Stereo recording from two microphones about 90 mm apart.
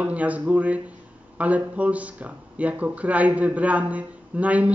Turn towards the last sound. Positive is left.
turn(degrees=-15)  # may be behind; listen again after turning